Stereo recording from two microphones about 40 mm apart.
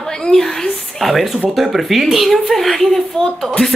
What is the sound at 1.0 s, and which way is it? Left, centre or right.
A woman's voice, centre.